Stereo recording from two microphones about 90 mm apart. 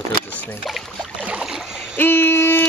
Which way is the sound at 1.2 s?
15° right (ahead or behind).